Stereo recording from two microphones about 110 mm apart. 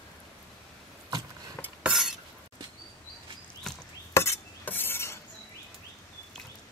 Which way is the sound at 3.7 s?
5° left (ahead or behind).